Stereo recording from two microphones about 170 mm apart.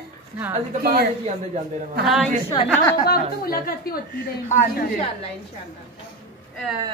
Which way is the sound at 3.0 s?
65° left (ahead or behind).